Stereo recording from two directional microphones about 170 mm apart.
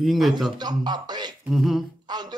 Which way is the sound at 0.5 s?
25° right (ahead or behind).